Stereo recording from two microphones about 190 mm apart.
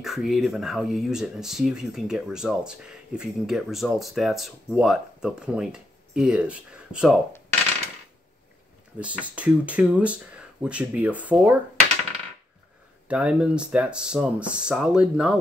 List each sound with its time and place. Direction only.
0.0 s speech: centre (ahead or behind)
9.0 s speech: 5° right (ahead or behind)
13.1 s speech: 5° right (ahead or behind)